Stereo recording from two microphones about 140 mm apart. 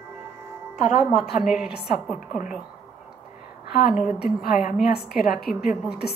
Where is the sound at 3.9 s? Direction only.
5° right (ahead or behind).